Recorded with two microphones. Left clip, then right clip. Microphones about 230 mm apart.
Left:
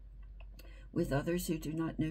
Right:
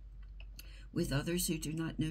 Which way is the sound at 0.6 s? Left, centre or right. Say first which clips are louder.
Left 2 dB; centre.